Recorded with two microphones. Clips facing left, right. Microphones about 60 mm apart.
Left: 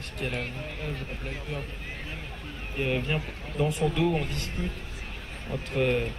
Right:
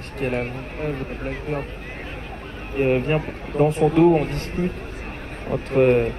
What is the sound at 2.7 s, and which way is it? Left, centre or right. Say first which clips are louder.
A man's voice: right 9 dB; right.